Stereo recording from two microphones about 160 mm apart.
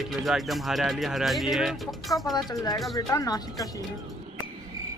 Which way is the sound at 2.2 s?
25° left (ahead or behind).